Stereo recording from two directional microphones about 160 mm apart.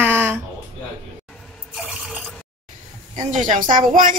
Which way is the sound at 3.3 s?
55° right (ahead or behind).